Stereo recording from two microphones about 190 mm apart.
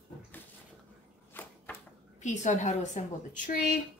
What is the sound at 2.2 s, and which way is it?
Speech, 40° left (ahead or behind).